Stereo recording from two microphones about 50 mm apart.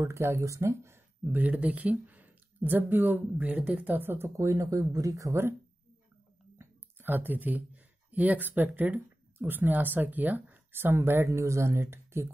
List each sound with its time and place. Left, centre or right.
0.0 s speech: right
1.2 s speech: right
4.4 s speech: right
6.6 s a sound: right
7.0 s speech: right
10.7 s speech: right